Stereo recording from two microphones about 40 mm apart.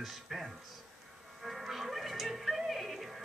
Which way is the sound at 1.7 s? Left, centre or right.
Centre.